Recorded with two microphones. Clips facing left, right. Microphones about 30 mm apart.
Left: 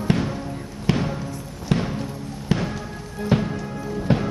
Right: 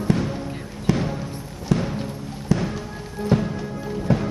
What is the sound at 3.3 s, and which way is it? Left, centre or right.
Music, left.